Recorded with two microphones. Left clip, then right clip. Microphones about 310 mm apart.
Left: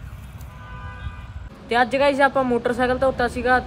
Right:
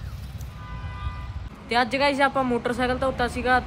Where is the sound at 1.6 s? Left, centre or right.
Centre.